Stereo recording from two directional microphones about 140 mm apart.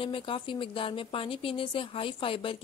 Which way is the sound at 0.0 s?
40° left (ahead or behind).